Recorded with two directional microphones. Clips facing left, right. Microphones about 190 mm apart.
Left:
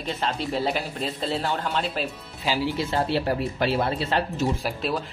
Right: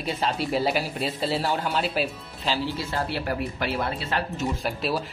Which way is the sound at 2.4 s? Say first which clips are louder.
Left 2 dB; 20° left (ahead or behind).